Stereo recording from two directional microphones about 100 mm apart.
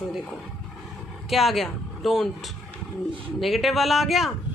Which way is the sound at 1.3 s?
Centre (ahead or behind).